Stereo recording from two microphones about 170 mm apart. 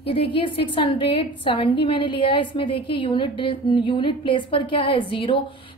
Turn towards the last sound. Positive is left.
turn(degrees=30)  # may be behind; listen again after turning